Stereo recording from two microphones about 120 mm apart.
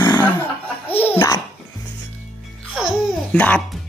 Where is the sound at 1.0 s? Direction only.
15° left (ahead or behind).